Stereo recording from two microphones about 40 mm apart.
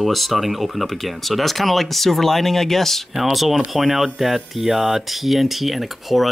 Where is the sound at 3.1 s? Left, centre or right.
Centre.